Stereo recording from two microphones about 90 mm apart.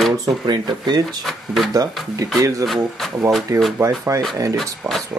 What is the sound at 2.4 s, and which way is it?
Speech, 40° right (ahead or behind).